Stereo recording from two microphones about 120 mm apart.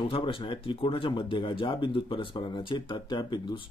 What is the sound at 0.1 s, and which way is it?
Speech, 50° left (ahead or behind).